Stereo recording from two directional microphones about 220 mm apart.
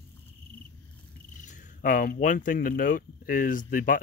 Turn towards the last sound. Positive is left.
turn(degrees=35)  # may be behind; listen again after turning